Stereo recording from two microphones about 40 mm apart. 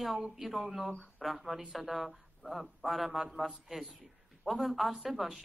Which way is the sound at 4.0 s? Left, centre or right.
Centre.